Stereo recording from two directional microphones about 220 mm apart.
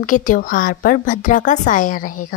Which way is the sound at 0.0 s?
35° left (ahead or behind).